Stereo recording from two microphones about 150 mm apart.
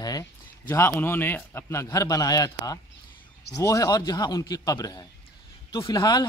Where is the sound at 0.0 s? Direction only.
25° left (ahead or behind).